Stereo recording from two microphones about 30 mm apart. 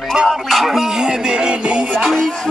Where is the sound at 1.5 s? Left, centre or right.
Right.